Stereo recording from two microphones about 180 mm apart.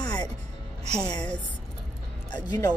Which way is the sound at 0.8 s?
40° right (ahead or behind).